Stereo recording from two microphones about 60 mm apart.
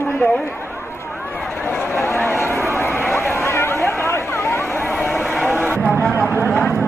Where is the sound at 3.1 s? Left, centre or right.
Left.